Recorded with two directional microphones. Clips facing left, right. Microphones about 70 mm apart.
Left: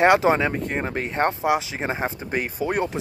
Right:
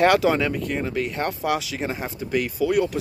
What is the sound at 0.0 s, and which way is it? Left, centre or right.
Speech, left.